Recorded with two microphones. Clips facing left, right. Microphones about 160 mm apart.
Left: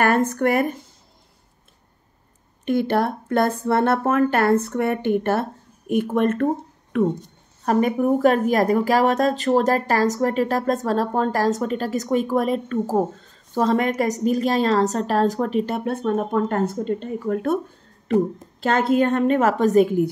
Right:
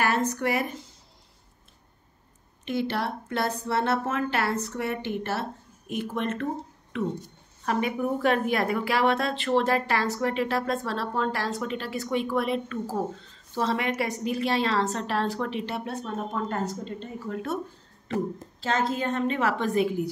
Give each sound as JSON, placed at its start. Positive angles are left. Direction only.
{"t": 0.0, "sound": "speech", "side_deg": 55}
{"t": 2.6, "sound": "speech", "side_deg": 50}
{"t": 18.6, "sound": "speech", "side_deg": 60}